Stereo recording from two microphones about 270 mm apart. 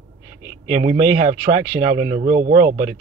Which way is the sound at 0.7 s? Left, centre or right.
Right.